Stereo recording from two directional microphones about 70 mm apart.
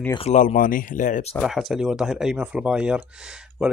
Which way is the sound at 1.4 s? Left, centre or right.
Centre.